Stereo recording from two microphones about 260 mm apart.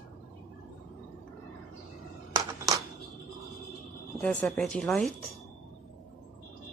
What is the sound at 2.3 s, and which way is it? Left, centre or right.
Music, centre.